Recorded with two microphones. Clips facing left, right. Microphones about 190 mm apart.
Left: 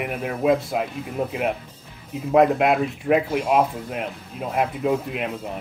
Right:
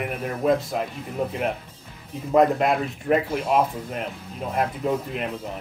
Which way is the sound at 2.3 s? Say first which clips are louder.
Left 2 dB; 5° left (ahead or behind).